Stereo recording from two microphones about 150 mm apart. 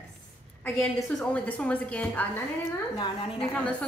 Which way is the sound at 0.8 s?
10° left (ahead or behind).